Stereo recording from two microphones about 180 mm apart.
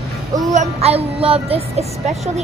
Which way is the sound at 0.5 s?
35° right (ahead or behind).